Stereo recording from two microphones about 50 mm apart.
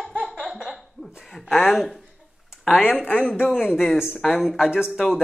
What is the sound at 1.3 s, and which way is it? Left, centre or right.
Speech, centre.